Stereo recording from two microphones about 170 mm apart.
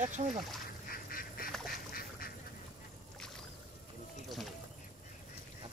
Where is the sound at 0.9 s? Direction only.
60° left (ahead or behind).